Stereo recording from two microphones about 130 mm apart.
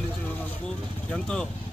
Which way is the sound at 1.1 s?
5° left (ahead or behind).